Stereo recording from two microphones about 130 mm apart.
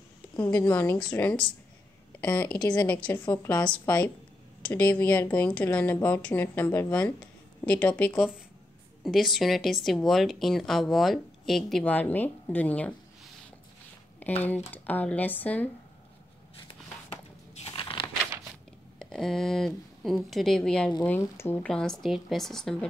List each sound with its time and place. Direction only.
0.4 s a woman's voice: 20° left (ahead or behind)
9.0 s speech: centre (ahead or behind)
14.2 s a woman's voice: 15° left (ahead or behind)
17.7 s a sound: 40° left (ahead or behind)
18.9 s speech: 5° left (ahead or behind)
21.2 s a woman's voice: 20° left (ahead or behind)
21.6 s speech: 5° left (ahead or behind)